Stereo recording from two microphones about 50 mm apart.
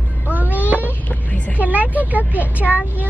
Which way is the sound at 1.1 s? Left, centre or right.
Left.